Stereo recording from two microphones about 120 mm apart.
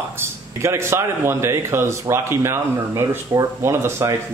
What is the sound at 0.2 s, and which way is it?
A man's voice, 20° right (ahead or behind).